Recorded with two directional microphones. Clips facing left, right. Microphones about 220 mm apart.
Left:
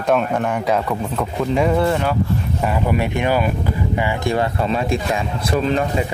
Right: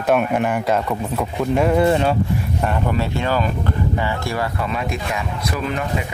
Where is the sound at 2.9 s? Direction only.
15° left (ahead or behind).